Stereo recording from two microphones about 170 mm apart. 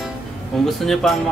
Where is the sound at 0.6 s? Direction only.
Centre (ahead or behind).